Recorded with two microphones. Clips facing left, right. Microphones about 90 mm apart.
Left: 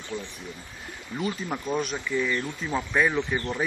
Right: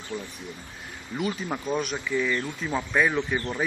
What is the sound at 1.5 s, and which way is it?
Speech, centre (ahead or behind).